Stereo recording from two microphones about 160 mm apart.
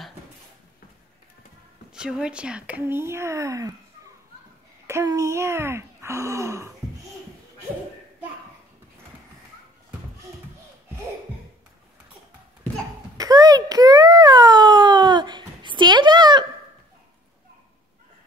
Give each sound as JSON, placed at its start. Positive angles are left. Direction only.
{"t": 1.9, "sound": "speech", "side_deg": -5}
{"t": 4.8, "sound": "speech", "side_deg": -20}
{"t": 13.2, "sound": "a sound", "side_deg": -25}